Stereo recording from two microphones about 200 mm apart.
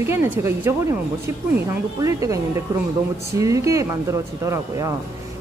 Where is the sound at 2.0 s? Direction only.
15° right (ahead or behind).